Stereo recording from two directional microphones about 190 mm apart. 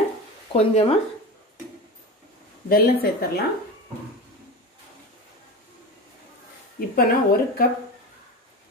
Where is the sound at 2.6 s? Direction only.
55° left (ahead or behind).